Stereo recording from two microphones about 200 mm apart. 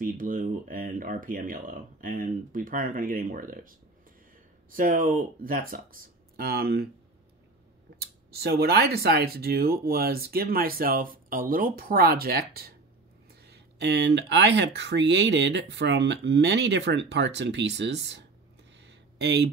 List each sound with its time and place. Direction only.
0.0 s speech: 45° right (ahead or behind)
8.0 s speech: 50° right (ahead or behind)
18.8 s a sound: 55° right (ahead or behind)